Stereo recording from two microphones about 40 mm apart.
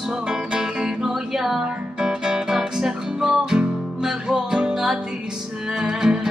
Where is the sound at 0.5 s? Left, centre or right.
Centre.